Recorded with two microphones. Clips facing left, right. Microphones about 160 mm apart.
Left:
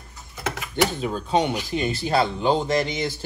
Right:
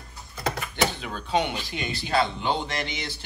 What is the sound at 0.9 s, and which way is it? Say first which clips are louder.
Speech: left 4 dB; 40° left (ahead or behind).